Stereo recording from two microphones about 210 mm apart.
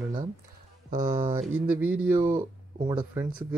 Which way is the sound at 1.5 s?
5° right (ahead or behind).